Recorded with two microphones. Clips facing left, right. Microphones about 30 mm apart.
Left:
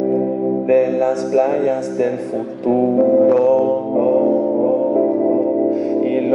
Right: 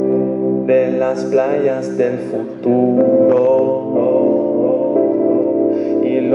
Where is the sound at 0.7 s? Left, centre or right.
Right.